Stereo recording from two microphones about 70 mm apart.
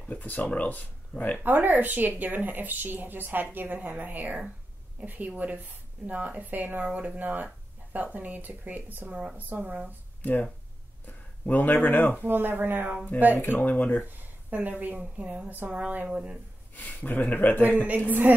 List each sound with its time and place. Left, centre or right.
0.0 s speech: left
1.4 s speech: right
11.1 s speech: left
12.2 s speech: right
13.4 s speech: left
14.5 s speech: right
16.7 s speech: left
17.6 s speech: right